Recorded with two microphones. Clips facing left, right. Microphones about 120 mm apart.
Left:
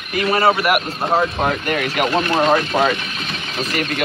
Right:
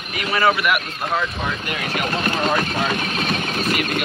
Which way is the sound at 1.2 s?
50° left (ahead or behind).